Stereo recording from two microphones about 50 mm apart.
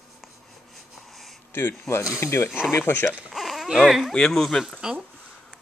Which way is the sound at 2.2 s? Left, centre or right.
Left.